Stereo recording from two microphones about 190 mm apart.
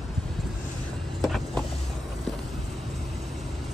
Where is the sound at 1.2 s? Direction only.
Centre (ahead or behind).